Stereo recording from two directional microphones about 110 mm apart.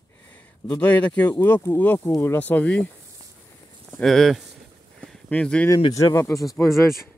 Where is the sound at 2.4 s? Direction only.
15° left (ahead or behind).